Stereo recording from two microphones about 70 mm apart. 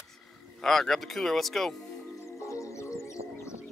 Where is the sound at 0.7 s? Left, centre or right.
Centre.